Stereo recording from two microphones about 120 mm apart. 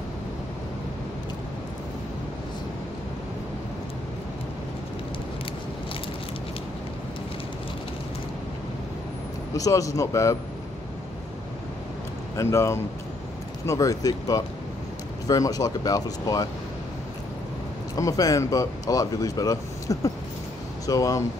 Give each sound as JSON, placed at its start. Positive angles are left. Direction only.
{"t": 9.6, "sound": "speech", "side_deg": 30}
{"t": 12.4, "sound": "speech", "side_deg": 25}
{"t": 17.9, "sound": "speech", "side_deg": 30}